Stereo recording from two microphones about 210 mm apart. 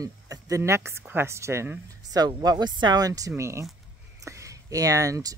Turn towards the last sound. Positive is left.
turn(degrees=-15)  # may be behind; listen again after turning